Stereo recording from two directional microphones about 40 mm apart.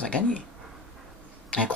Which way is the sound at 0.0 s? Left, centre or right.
Left.